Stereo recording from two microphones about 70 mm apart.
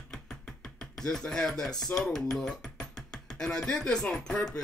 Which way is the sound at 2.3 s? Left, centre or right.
Centre.